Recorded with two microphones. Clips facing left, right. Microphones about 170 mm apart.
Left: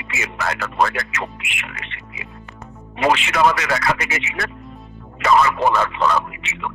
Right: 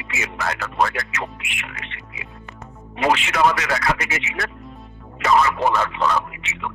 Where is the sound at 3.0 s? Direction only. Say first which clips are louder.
Left 1 dB; 90° left.